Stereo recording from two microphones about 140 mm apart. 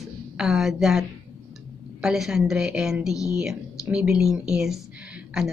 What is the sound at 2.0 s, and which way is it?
A woman's voice, 5° right (ahead or behind).